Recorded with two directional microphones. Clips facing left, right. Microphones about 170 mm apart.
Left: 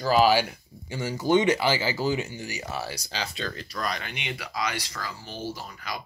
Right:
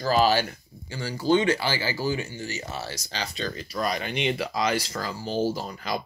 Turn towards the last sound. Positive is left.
turn(degrees=-30)  # may be behind; listen again after turning